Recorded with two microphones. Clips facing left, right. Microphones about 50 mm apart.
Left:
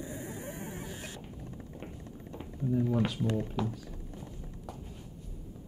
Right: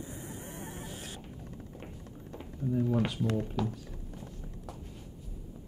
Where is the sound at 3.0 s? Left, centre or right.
Centre.